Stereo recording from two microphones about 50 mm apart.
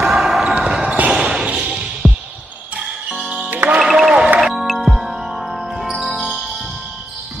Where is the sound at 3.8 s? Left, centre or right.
Centre.